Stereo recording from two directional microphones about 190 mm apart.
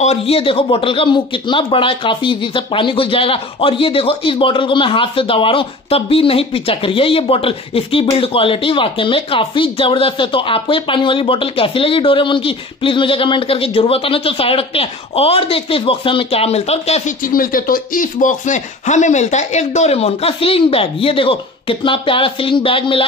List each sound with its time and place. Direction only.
0.0 s a man's voice: 30° left (ahead or behind)